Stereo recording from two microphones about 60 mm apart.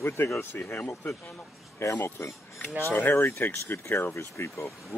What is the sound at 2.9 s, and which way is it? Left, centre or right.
Speech, left.